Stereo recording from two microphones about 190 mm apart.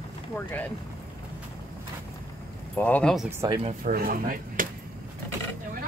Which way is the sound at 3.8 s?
50° right (ahead or behind).